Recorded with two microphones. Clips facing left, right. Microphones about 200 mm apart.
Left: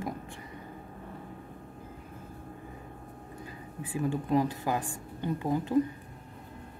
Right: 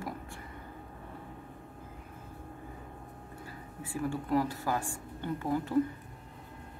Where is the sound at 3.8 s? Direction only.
20° left (ahead or behind).